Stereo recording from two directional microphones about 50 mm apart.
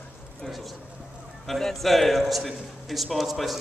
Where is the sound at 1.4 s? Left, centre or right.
Centre.